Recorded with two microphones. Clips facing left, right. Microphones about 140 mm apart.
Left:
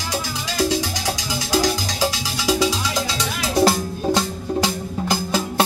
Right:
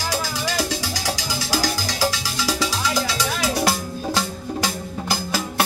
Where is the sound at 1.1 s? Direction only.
20° left (ahead or behind).